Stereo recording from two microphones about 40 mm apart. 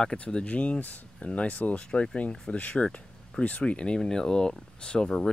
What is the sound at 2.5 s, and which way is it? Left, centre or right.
A man's voice, left.